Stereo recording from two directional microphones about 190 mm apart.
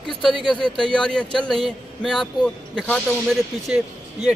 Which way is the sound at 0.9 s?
5° left (ahead or behind).